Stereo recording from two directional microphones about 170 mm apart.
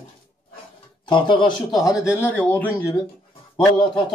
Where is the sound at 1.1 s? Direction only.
30° left (ahead or behind).